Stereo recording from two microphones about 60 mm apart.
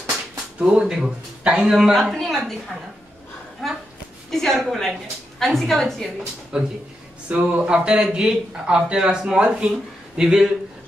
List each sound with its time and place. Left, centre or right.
0.7 s speech: centre
1.8 s speech: centre
3.6 s speech: centre
6.5 s speech: centre